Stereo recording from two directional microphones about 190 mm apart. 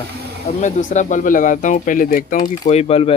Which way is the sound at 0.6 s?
40° left (ahead or behind).